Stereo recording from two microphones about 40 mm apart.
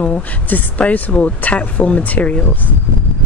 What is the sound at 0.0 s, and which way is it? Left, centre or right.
Speech, left.